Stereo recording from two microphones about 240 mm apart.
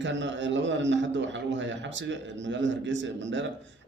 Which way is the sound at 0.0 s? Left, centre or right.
Right.